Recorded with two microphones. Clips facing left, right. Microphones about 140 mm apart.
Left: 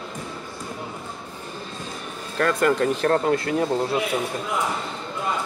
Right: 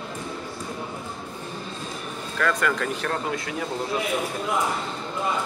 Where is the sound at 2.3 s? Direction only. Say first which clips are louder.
Left 4 dB; 35° left (ahead or behind).